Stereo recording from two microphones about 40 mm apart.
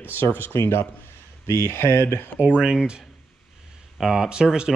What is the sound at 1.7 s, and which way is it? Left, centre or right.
Speech, left.